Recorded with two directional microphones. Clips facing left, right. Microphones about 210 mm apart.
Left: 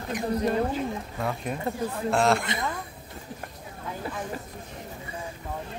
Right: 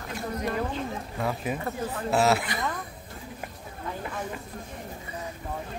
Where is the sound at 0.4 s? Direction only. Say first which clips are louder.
Left 4 dB; 30° left (ahead or behind).